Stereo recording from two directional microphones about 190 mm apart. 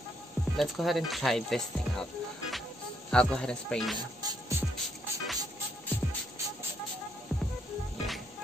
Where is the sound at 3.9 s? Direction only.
20° right (ahead or behind).